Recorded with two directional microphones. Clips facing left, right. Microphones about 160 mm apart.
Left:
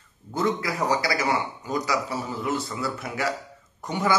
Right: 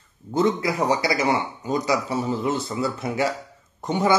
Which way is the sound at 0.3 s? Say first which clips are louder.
Right 4 dB; 20° right (ahead or behind).